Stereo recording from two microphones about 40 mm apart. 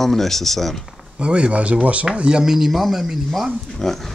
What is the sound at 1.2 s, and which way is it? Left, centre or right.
Speech, right.